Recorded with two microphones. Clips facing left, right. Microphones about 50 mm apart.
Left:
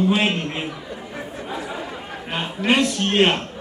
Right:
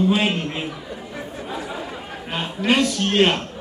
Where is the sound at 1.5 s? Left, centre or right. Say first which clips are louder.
Even; centre.